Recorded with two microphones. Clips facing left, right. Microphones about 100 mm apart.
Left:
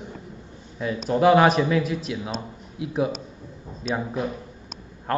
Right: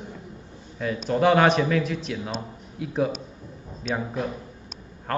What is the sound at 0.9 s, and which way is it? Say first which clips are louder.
Speech: left 2 dB; 35° left (ahead or behind).